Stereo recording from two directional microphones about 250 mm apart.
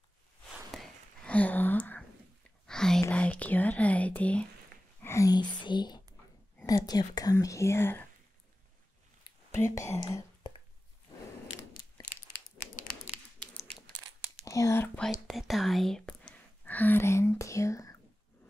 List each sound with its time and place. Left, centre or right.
0.7 s whispering: centre
6.6 s speech: centre
9.2 s whispering: centre
11.4 s a sound: left
14.4 s a sound: centre
15.0 s whispering: centre